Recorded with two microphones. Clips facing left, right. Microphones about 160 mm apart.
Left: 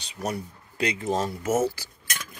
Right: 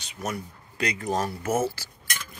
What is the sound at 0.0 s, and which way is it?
Speech, 35° left (ahead or behind).